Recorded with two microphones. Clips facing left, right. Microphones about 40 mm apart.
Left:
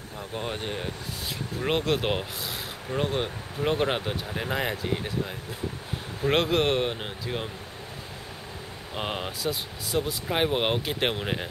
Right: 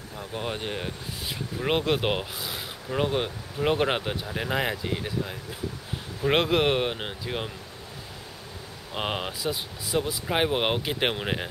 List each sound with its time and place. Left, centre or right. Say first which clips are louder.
0.3 s speech: right 1 dB; centre
3.0 s speech: right 2 dB; centre
5.0 s speech: even; centre
8.9 s speech: right 2 dB; centre
9.4 s speech: even; centre